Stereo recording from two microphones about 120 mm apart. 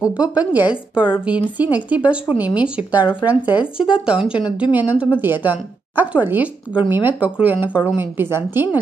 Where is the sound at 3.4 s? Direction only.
40° left (ahead or behind).